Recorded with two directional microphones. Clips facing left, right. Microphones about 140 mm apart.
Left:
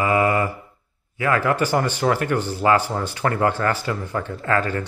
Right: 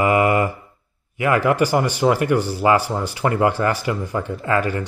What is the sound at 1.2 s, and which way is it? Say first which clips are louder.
Speech: right 3 dB; 15° right (ahead or behind).